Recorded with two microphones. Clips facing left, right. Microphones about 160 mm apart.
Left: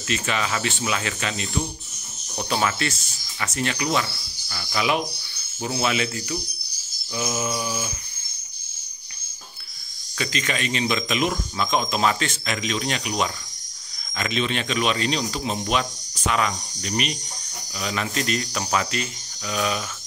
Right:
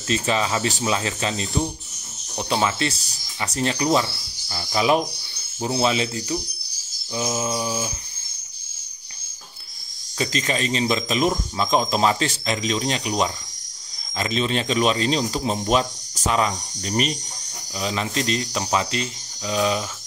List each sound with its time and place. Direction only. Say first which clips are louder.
0.1 s speech: right 4 dB; 30° right (ahead or behind)
10.1 s speech: right 3 dB; 35° right (ahead or behind)